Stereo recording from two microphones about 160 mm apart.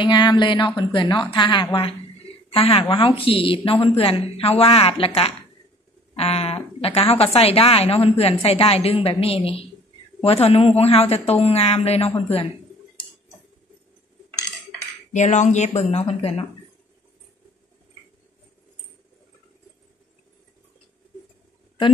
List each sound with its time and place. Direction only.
0.0 s a woman's voice: 30° left (ahead or behind)
15.1 s a woman's voice: 45° left (ahead or behind)